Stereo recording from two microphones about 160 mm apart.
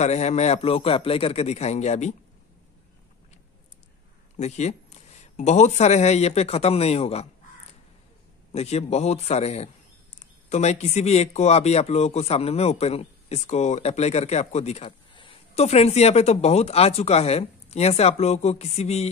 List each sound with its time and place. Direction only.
0.0 s a man's voice: 45° left (ahead or behind)
4.4 s a man's voice: 45° left (ahead or behind)
8.5 s speech: 40° left (ahead or behind)